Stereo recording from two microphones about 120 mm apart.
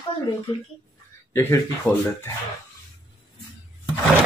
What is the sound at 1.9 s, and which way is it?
Speech, 10° left (ahead or behind).